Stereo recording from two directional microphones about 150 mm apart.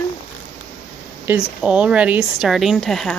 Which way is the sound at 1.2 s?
10° right (ahead or behind).